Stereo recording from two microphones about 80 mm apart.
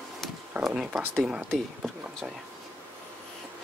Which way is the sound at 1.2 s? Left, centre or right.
Centre.